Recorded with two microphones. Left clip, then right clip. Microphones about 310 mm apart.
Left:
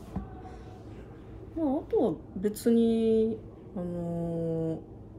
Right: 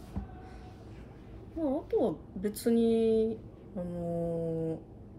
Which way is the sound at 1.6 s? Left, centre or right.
Centre.